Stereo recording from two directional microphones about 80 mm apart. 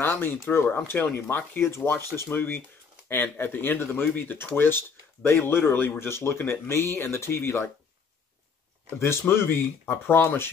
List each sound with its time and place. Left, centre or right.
0.0 s speech: left
9.0 s speech: left